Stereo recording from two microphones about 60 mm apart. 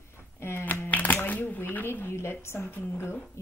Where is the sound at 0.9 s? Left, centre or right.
Left.